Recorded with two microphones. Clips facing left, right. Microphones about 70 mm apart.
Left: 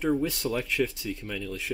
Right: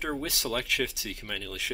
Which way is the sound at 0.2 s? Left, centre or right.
Right.